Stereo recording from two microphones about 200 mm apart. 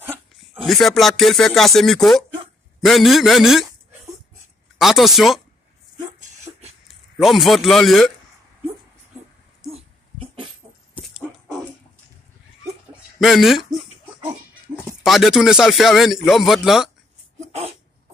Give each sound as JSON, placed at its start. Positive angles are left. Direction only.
{"t": 0.7, "sound": "speech", "side_deg": 0}
{"t": 4.7, "sound": "speech", "side_deg": 0}
{"t": 6.1, "sound": "beatboxing", "side_deg": -35}
{"t": 6.9, "sound": "a man's voice", "side_deg": 0}
{"t": 9.6, "sound": "a sound", "side_deg": -30}
{"t": 13.2, "sound": "speech", "side_deg": 0}
{"t": 15.0, "sound": "speech", "side_deg": 0}